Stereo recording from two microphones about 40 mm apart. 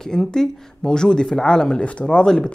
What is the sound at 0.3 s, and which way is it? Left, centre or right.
Speech, centre.